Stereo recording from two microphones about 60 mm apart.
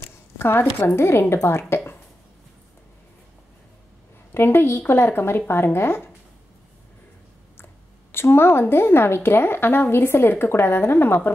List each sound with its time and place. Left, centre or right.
0.4 s a woman's voice: left
4.3 s speech: left
8.1 s speech: left